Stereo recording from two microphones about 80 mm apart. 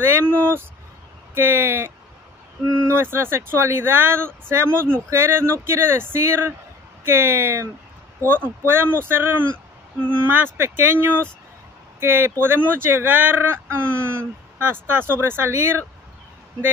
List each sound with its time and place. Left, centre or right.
0.0 s speech: right
2.9 s speech: right